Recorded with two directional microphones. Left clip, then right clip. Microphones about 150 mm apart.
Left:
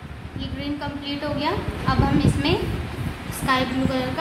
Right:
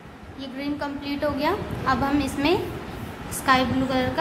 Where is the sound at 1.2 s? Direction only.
20° right (ahead or behind).